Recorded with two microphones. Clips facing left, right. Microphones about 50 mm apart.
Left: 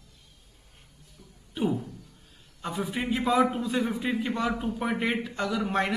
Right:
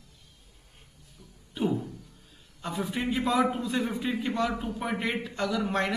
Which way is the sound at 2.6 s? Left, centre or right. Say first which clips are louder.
Even; centre.